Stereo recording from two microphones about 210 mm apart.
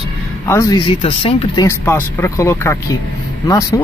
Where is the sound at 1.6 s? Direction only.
10° left (ahead or behind).